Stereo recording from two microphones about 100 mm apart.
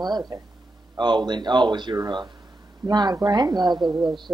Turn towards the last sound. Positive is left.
turn(degrees=-50)  # may be behind; listen again after turning